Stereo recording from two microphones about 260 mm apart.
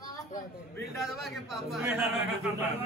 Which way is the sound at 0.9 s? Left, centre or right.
Centre.